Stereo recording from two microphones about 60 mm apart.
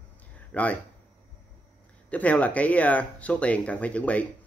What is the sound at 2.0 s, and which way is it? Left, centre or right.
Speech, left.